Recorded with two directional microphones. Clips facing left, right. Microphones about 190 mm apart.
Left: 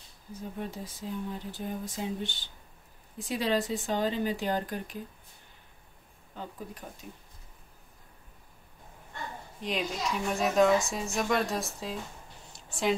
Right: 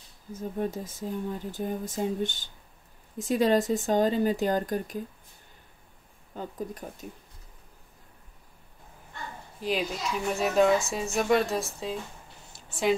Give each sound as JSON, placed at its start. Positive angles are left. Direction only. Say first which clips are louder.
{"t": 0.3, "sound": "speech", "louder": "right 7 dB", "side_deg": -45}
{"t": 6.3, "sound": "speech", "louder": "right 6 dB", "side_deg": -45}
{"t": 9.6, "sound": "speech", "louder": "right 3 dB", "side_deg": 0}
{"t": 12.5, "sound": "a sound", "louder": "right 3 dB", "side_deg": 0}